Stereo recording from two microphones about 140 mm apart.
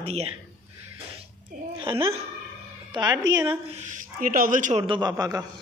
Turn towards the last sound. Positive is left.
turn(degrees=-25)  # may be behind; listen again after turning